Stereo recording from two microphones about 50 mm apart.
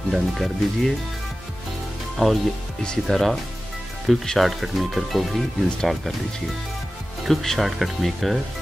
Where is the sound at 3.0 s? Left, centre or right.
Centre.